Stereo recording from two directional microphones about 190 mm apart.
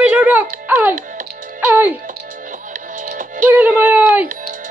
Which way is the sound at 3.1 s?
45° right (ahead or behind).